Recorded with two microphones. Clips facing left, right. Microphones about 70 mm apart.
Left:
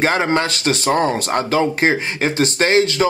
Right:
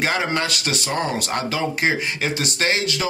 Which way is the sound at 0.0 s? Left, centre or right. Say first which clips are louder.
Left 5 dB; left.